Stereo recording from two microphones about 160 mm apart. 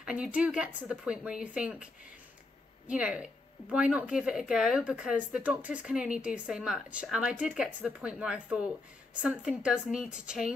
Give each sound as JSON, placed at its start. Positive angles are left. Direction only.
{"t": 0.0, "sound": "speech", "side_deg": -5}
{"t": 2.9, "sound": "speech", "side_deg": -5}